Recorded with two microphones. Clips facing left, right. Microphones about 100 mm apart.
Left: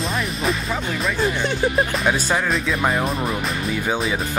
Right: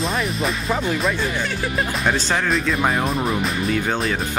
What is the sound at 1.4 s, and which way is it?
Speech, 25° left (ahead or behind).